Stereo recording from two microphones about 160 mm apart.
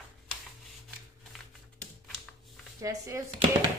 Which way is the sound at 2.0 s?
Centre (ahead or behind).